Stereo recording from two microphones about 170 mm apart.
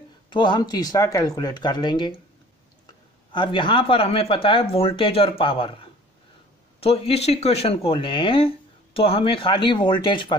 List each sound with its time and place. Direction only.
0.3 s speech: 25° left (ahead or behind)
3.3 s speech: 30° left (ahead or behind)